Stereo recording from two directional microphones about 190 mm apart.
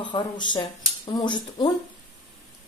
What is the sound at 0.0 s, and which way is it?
A woman's voice, 25° left (ahead or behind).